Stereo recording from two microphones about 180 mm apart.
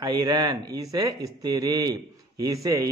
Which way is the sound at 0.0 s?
20° right (ahead or behind).